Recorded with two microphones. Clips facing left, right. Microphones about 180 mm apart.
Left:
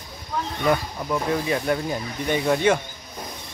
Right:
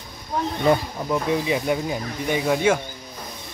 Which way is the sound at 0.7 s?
25° right (ahead or behind).